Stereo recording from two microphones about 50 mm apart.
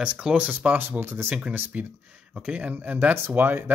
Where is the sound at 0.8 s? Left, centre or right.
Right.